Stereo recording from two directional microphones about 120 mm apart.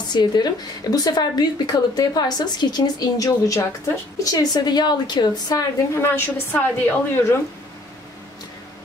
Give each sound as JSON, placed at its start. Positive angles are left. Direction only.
{"t": 0.1, "sound": "speech", "side_deg": 35}
{"t": 6.5, "sound": "a woman's voice", "side_deg": 20}